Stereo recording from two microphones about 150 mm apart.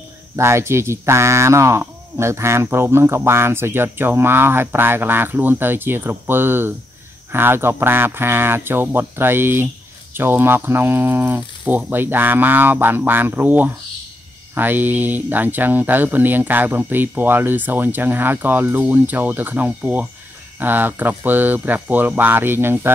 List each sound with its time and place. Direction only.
0.4 s speech: 15° right (ahead or behind)